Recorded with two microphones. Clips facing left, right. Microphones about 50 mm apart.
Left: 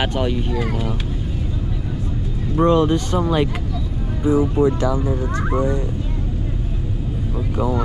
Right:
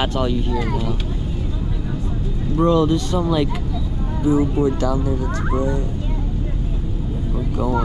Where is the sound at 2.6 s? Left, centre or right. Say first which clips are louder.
Left 1 dB; left.